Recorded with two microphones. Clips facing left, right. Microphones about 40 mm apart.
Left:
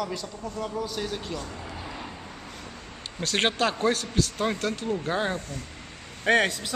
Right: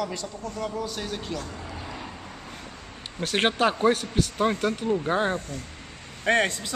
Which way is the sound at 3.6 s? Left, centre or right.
Right.